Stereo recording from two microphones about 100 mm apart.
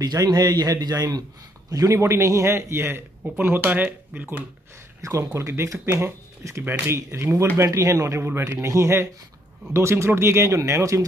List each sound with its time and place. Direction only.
0.0 s a man's voice: 40° right (ahead or behind); by 4.5 s 15° right (ahead or behind)
5.0 s a man's voice: 30° right (ahead or behind)